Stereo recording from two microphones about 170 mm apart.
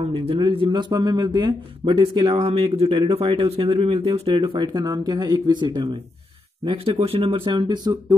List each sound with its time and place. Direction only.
0.1 s speech: 35° right (ahead or behind)